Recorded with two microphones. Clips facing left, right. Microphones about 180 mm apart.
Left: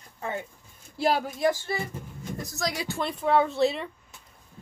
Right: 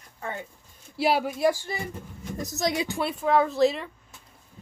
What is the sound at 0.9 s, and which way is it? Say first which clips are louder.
A woman's voice: right 1 dB; 5° right (ahead or behind).